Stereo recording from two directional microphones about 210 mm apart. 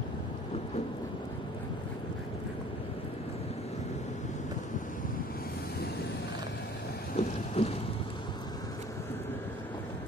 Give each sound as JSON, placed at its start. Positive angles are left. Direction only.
{"t": 7.2, "sound": "boat", "side_deg": 30}